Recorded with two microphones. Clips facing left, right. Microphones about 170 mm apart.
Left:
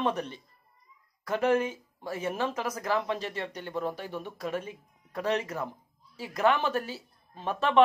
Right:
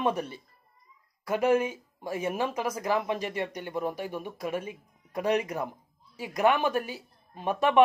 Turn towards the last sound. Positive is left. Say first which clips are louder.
# right 2 dB
turn(degrees=-15)  # may be behind; listen again after turning